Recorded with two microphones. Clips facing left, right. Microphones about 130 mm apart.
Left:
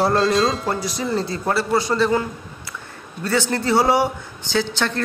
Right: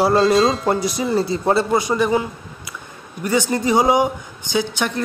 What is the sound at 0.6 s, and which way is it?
A man's voice, 15° right (ahead or behind).